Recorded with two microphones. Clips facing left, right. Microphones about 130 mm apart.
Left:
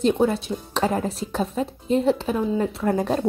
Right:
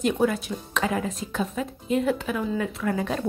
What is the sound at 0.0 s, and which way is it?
Speech, 30° left (ahead or behind).